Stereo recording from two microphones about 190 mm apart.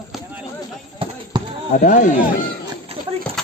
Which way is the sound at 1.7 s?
45° left (ahead or behind).